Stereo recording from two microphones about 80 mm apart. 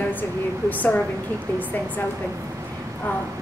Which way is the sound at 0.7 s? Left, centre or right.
Centre.